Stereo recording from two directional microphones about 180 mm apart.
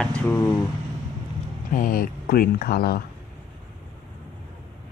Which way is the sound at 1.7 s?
50° left (ahead or behind).